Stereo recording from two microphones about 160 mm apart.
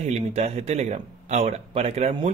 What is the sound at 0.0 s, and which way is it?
A man's voice, 40° right (ahead or behind).